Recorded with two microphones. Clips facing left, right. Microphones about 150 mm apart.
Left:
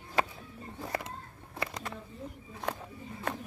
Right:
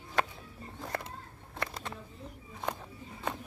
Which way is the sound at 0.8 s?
5° left (ahead or behind).